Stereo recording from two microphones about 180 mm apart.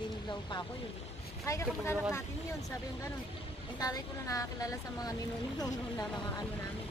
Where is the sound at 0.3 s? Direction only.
25° left (ahead or behind).